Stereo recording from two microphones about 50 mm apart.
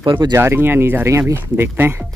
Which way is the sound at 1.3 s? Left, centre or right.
Right.